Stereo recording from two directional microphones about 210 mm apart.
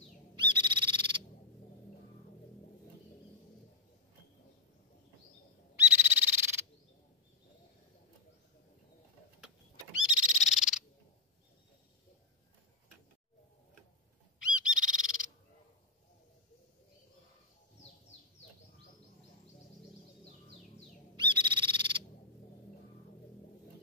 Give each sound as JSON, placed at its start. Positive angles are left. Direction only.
{"t": 0.4, "sound": "frog", "side_deg": -20}
{"t": 5.8, "sound": "frog", "side_deg": -10}
{"t": 10.0, "sound": "frog", "side_deg": -5}
{"t": 14.8, "sound": "frog", "side_deg": -5}
{"t": 21.2, "sound": "frog", "side_deg": -20}